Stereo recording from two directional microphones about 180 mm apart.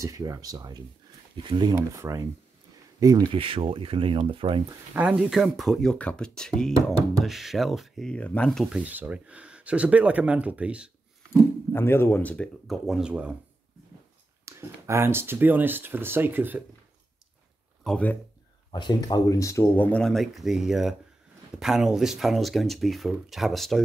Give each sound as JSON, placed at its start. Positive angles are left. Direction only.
{"t": 0.0, "sound": "speech", "side_deg": -20}
{"t": 4.9, "sound": "speech", "side_deg": -5}
{"t": 11.7, "sound": "speech", "side_deg": 15}
{"t": 14.4, "sound": "speech", "side_deg": -15}
{"t": 17.8, "sound": "speech", "side_deg": 5}
{"t": 18.7, "sound": "speech", "side_deg": 25}